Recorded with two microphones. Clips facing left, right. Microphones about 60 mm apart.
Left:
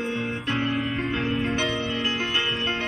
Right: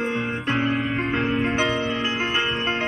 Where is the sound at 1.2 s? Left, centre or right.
Right.